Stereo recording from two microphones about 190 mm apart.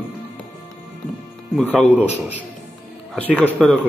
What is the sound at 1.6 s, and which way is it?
Speech, 10° left (ahead or behind).